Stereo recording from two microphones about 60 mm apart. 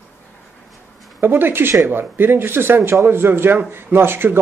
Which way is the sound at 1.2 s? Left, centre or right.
Right.